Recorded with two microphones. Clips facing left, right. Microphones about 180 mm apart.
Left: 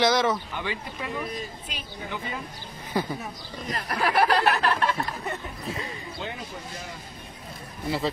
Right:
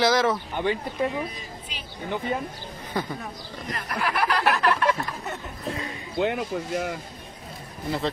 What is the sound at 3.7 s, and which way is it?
Speech, 35° left (ahead or behind).